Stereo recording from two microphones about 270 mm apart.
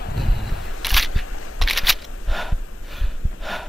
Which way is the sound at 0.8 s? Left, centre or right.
Centre.